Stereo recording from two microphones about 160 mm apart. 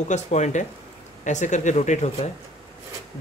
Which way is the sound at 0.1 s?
45° left (ahead or behind).